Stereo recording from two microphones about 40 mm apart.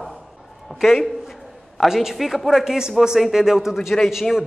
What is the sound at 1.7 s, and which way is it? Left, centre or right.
Speech, centre.